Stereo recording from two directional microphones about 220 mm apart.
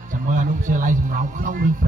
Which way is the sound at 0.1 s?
35° right (ahead or behind).